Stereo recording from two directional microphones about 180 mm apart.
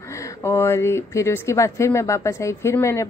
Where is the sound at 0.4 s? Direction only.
15° left (ahead or behind).